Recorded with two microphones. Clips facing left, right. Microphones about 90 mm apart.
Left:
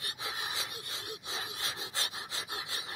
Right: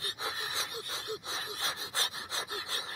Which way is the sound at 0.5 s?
30° right (ahead or behind).